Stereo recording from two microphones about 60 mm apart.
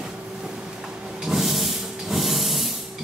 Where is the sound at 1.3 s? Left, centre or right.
Centre.